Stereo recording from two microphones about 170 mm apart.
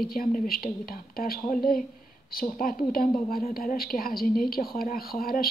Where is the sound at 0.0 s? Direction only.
60° left (ahead or behind).